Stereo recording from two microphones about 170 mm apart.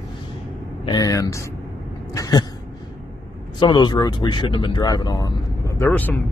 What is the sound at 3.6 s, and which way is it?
Speech, 25° left (ahead or behind).